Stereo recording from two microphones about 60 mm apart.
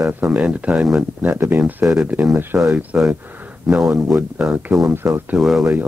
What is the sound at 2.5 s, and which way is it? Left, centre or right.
Speech, right.